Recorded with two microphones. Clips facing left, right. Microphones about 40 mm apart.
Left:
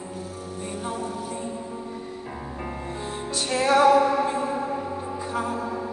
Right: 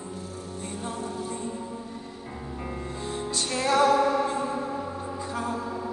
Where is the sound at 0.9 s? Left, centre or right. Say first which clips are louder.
Left 3 dB; left.